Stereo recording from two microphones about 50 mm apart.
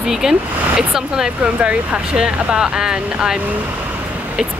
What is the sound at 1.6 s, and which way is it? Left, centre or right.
Speech, right.